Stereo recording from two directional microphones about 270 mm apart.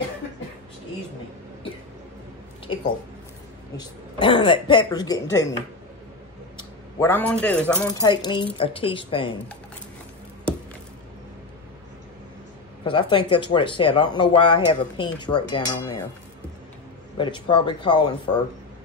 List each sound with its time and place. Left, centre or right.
2.6 s a sound: centre
3.7 s speech: centre
6.5 s speech: centre
12.8 s speech: centre
17.2 s speech: centre